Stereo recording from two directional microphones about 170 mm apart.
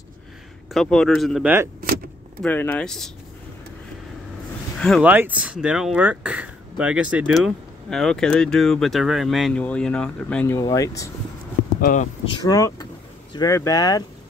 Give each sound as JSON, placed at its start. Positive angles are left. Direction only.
{"t": 0.7, "sound": "speech", "side_deg": 5}
{"t": 2.4, "sound": "speech", "side_deg": 10}
{"t": 5.0, "sound": "speech", "side_deg": -10}
{"t": 11.8, "sound": "speech", "side_deg": 45}
{"t": 12.4, "sound": "speech", "side_deg": 20}